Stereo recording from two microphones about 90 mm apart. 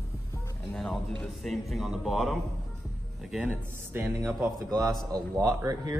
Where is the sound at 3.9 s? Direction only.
30° right (ahead or behind).